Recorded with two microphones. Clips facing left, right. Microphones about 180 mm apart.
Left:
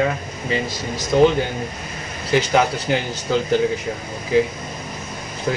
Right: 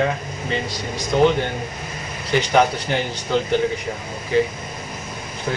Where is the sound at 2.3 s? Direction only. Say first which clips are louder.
Even; 5° left (ahead or behind).